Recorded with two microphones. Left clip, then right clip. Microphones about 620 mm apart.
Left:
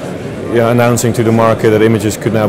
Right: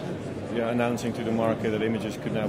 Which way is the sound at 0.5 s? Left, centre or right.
Left.